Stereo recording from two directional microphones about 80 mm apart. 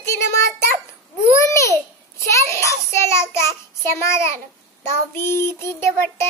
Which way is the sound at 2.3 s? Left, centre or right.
Left.